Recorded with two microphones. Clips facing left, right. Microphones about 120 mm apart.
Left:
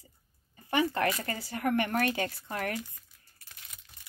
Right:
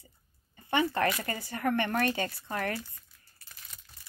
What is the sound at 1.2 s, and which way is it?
Speech, 45° right (ahead or behind).